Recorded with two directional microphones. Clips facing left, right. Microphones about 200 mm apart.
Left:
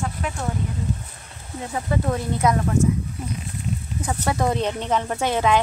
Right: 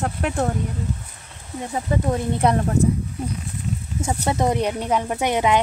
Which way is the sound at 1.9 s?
15° right (ahead or behind).